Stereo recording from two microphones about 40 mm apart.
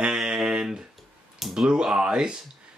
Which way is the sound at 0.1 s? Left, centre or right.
Centre.